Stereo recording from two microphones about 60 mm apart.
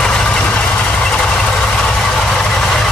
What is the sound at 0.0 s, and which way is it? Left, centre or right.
Vehicle, centre.